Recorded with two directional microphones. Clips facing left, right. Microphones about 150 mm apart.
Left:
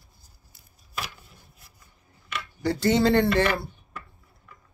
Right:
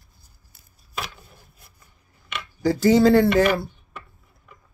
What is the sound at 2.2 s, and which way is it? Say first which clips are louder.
Scissors: right 5 dB; 90° right.